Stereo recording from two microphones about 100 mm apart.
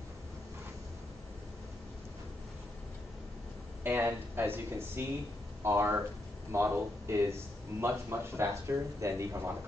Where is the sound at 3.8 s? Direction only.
20° right (ahead or behind).